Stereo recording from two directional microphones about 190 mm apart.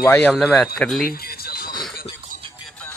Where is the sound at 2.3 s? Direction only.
45° right (ahead or behind).